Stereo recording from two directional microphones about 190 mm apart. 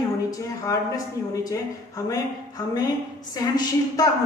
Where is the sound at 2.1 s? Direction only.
20° left (ahead or behind).